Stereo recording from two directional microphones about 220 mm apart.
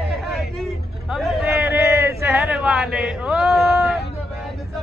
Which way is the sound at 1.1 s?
Centre (ahead or behind).